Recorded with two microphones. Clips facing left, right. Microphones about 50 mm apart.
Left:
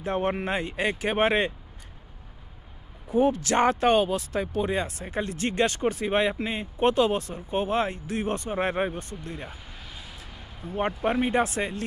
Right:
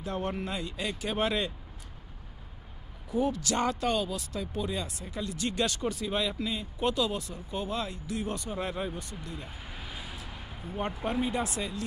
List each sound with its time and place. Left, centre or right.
0.0 s speech: left
3.1 s speech: left
9.7 s a sound: centre
11.1 s speech: left